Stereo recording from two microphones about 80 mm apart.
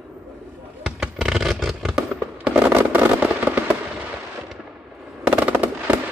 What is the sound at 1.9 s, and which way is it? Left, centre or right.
Fireworks, centre.